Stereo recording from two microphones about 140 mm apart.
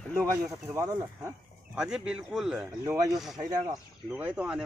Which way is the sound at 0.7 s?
20° right (ahead or behind).